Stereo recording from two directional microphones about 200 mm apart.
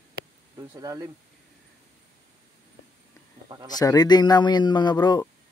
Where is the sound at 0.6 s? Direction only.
20° right (ahead or behind).